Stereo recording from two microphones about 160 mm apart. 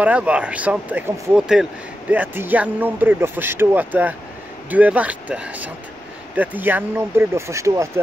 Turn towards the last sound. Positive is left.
turn(degrees=-20)  # may be behind; listen again after turning